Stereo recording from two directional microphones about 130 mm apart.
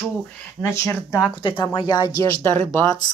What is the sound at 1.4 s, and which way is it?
Speech, 35° left (ahead or behind).